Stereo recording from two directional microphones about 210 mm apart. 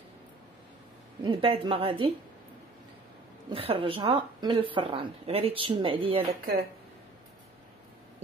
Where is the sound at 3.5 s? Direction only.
25° right (ahead or behind).